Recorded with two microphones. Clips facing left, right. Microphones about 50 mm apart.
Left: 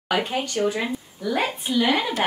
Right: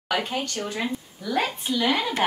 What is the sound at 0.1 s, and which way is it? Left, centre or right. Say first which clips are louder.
A woman's voice: left 3 dB; centre.